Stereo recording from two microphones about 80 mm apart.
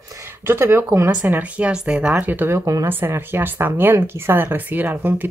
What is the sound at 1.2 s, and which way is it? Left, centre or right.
Speech, right.